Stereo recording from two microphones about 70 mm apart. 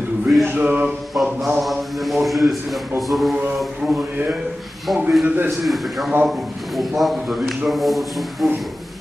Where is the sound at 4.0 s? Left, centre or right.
Right.